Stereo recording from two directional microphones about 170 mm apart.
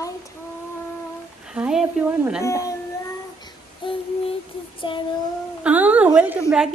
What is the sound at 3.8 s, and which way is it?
Child singing, 30° left (ahead or behind).